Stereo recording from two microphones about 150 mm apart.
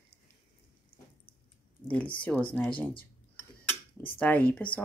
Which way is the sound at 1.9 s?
10° left (ahead or behind).